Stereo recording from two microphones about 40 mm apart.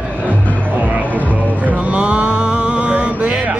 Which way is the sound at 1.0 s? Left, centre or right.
Left.